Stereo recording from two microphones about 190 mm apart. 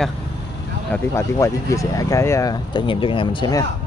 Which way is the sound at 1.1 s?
15° left (ahead or behind).